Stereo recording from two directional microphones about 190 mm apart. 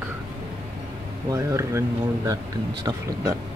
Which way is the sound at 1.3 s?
15° right (ahead or behind).